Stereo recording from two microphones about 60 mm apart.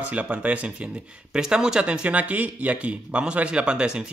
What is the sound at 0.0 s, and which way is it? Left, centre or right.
Speech, right.